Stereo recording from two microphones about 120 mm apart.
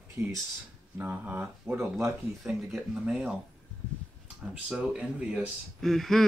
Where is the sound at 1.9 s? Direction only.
5° right (ahead or behind).